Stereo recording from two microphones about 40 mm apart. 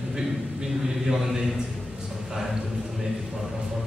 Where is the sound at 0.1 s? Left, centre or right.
Centre.